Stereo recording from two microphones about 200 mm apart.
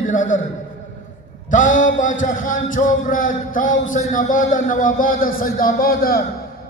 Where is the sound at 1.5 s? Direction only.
40° left (ahead or behind).